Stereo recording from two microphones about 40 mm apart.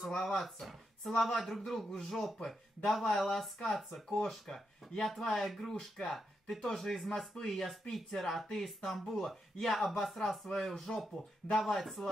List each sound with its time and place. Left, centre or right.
0.2 s speech: centre
4.5 s speech: left
5.0 s speech: centre
11.5 s speech: centre
11.8 s speech: centre